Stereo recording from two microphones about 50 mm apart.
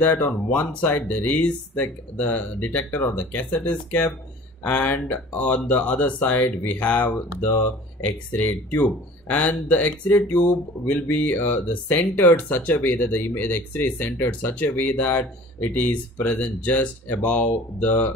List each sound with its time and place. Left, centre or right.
0.3 s speech: left
0.8 s speech: left
8.3 s speech: left